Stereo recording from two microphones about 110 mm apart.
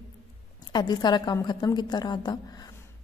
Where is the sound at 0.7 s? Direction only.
40° left (ahead or behind).